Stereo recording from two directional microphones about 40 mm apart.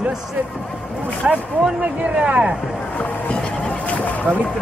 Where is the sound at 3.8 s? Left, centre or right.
Left.